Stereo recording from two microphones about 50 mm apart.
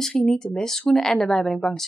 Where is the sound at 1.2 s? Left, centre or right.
Centre.